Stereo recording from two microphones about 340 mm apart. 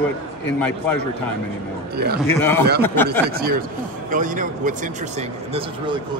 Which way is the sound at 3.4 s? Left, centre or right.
Right.